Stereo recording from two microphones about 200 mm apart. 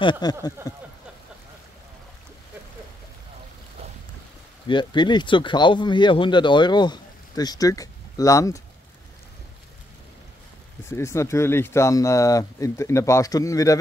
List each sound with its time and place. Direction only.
0.0 s speech: 20° left (ahead or behind)
4.6 s speech: 25° left (ahead or behind)
10.9 s speech: 15° left (ahead or behind)